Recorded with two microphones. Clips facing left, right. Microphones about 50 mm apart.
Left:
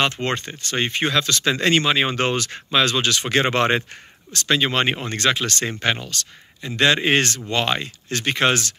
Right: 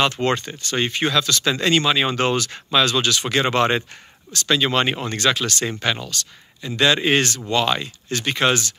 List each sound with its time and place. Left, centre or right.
0.0 s speech: left